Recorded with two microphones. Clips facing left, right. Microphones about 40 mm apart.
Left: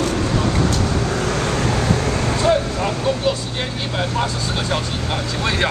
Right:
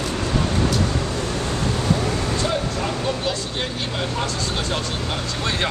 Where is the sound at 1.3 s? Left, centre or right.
Left.